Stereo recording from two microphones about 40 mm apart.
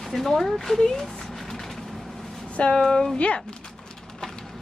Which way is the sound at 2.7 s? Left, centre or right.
Centre.